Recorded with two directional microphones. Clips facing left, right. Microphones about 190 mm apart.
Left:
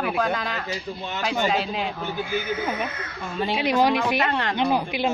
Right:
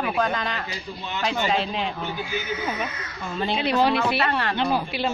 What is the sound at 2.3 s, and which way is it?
Speech, 50° left (ahead or behind).